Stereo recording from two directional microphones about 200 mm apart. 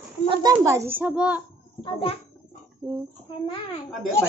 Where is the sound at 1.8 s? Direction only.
30° left (ahead or behind).